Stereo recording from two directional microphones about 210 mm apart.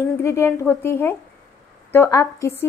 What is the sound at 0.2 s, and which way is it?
A woman's voice, 15° left (ahead or behind).